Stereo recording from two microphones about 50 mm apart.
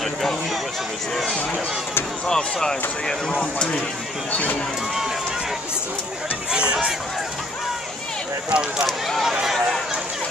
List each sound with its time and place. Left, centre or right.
2.2 s speech: centre
4.3 s speech: left
6.5 s speech: centre
8.5 s speech: centre
8.8 s speech: centre